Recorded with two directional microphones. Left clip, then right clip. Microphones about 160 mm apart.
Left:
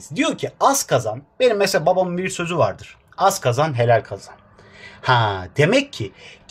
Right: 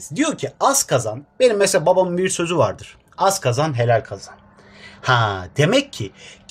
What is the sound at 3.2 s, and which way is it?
Speech, 10° right (ahead or behind).